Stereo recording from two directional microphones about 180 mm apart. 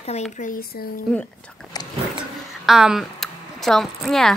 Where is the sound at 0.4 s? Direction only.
50° left (ahead or behind).